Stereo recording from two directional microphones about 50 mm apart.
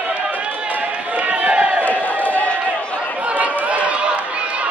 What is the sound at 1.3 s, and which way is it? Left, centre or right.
Crowd, right.